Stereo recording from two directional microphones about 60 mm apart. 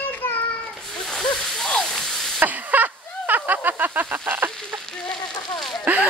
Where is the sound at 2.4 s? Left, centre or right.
Right.